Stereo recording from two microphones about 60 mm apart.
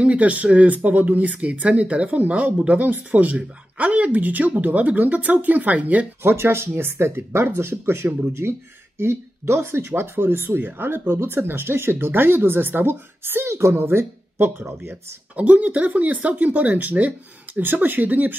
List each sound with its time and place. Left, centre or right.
0.0 s speech: right
6.2 s speech: right
15.3 s speech: right